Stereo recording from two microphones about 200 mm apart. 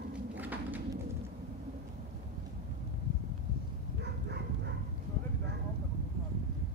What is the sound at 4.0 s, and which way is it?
Dog, 60° right (ahead or behind).